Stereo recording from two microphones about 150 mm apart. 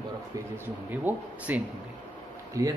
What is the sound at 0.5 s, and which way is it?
A man's voice, 10° right (ahead or behind).